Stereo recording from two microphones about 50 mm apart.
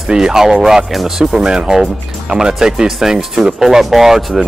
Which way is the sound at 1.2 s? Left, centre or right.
Centre.